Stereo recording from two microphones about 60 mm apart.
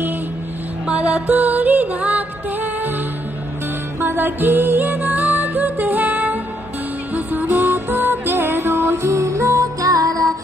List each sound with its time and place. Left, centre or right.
0.8 s music: right
4.0 s music: right